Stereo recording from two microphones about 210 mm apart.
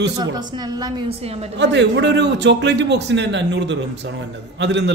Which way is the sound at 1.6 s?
55° right (ahead or behind).